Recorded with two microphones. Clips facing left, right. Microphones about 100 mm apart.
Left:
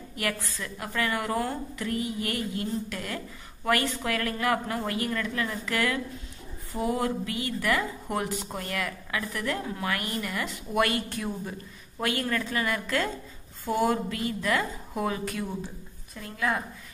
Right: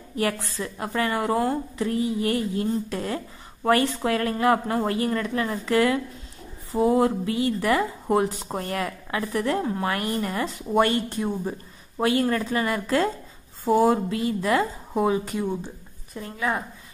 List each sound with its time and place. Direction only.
0.1 s a woman's voice: 30° right (ahead or behind)
15.0 s a woman's voice: 20° right (ahead or behind)